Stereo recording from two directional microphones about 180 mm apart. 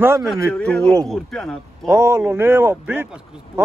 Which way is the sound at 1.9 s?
15° right (ahead or behind).